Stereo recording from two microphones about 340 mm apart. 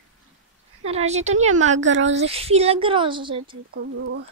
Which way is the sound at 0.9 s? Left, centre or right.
Centre.